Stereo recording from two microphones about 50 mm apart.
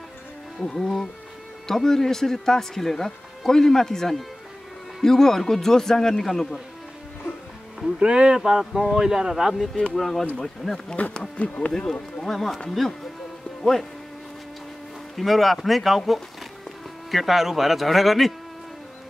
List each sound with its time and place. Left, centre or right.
0.6 s speech: centre
8.0 s speech: centre
9.9 s a man's voice: centre
11.1 s speech: left
11.9 s a man's voice: centre
15.1 s a man's voice: centre
17.1 s a man's voice: centre